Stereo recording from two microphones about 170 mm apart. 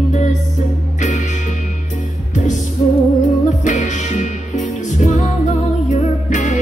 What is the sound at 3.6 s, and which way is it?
Music, 45° left (ahead or behind).